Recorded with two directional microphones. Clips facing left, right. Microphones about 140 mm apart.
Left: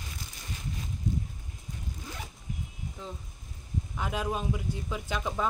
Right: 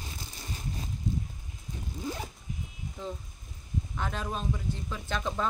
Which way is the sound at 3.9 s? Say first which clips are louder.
Left 3 dB; 10° left (ahead or behind).